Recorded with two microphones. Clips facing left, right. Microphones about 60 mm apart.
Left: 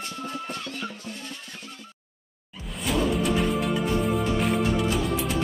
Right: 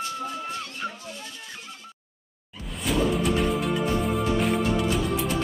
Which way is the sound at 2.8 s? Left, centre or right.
Centre.